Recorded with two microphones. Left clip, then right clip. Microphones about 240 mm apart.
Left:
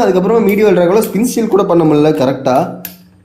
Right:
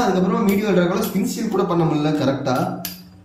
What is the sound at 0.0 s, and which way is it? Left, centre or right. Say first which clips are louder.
Speech: left 9 dB; left.